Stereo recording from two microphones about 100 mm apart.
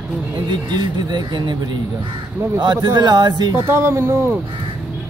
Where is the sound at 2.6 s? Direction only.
45° right (ahead or behind).